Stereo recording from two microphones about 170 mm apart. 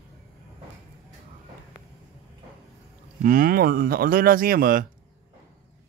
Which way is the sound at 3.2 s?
55° right (ahead or behind).